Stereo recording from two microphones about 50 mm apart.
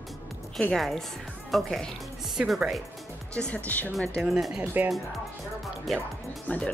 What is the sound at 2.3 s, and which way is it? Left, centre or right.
Speech, centre.